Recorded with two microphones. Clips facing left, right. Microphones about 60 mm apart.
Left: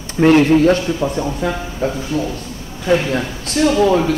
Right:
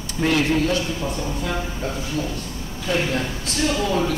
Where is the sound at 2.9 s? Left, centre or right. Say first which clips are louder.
Left 7 dB; left.